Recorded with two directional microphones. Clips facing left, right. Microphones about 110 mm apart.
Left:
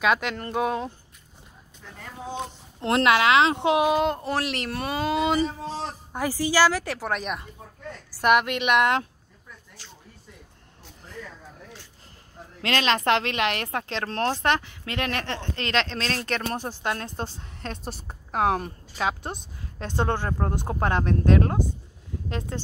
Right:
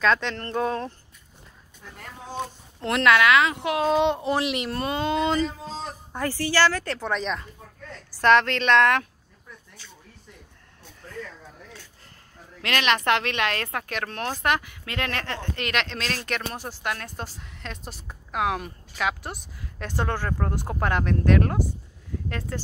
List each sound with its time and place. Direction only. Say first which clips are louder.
0.0 s speech: even; 10° left (ahead or behind)
2.0 s speech: even; centre (ahead or behind)
2.8 s a woman's voice: even; 30° left (ahead or behind)
3.8 s speech: right 1 dB; centre (ahead or behind); by 9.0 s 20° left (ahead or behind)
12.6 s a woman's voice: even; 30° left (ahead or behind)